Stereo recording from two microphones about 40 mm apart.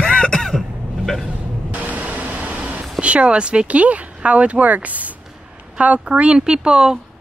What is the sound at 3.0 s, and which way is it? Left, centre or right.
Speech, right.